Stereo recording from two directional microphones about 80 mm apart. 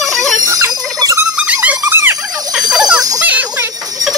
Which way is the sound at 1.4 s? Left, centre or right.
Centre.